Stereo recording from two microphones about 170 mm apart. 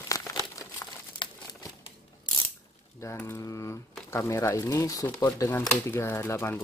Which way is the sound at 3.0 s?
15° left (ahead or behind).